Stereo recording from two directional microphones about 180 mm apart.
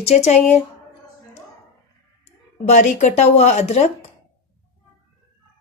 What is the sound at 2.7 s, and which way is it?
Speech, 40° left (ahead or behind).